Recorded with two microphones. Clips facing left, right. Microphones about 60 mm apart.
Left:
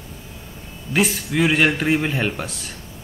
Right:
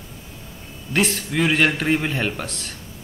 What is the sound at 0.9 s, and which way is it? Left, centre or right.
A man's voice, centre.